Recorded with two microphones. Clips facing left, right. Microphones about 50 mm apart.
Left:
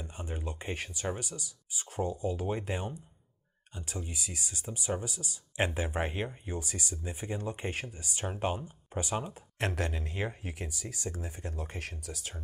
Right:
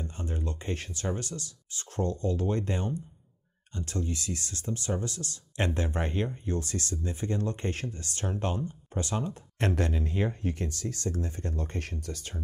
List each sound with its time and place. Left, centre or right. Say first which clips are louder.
0.0 s speech: right 4 dB; centre